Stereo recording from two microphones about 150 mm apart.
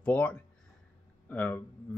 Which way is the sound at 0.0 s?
10° left (ahead or behind).